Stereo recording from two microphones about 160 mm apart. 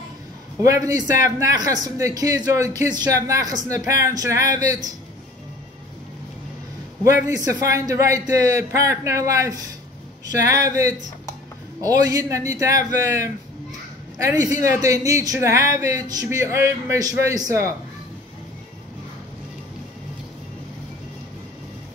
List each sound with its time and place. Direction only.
0.6 s speech: 20° right (ahead or behind)
4.4 s speech: 50° left (ahead or behind)
7.3 s speech: 20° right (ahead or behind)